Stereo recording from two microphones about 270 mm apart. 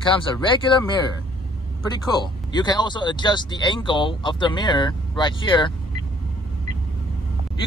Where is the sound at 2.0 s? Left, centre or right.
Centre.